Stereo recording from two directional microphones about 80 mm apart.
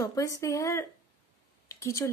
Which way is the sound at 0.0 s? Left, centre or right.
Left.